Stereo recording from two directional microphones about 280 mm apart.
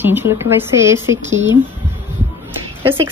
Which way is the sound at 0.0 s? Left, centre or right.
Centre.